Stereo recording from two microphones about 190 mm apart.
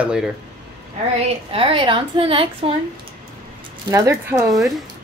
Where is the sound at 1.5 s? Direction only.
30° right (ahead or behind).